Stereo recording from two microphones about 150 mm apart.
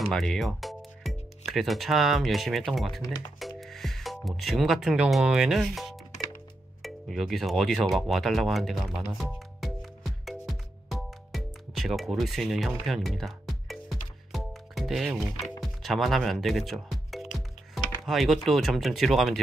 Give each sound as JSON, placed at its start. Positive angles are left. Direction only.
{"t": 0.0, "sound": "speech", "side_deg": 0}
{"t": 9.2, "sound": "music", "side_deg": 0}
{"t": 15.6, "sound": "speech", "side_deg": 0}